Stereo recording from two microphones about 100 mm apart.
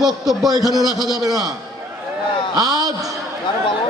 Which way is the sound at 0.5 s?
40° right (ahead or behind).